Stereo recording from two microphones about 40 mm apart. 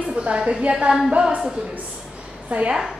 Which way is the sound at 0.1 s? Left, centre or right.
Right.